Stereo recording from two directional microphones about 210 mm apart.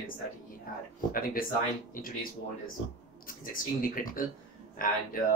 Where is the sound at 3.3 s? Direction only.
40° left (ahead or behind).